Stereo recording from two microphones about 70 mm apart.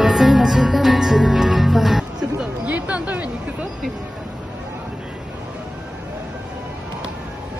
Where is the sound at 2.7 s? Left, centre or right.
Right.